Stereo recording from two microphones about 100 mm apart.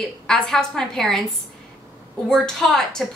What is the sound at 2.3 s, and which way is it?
Speech, 5° left (ahead or behind).